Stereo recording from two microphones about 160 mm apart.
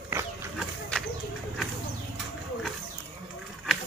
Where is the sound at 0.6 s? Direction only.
5° left (ahead or behind).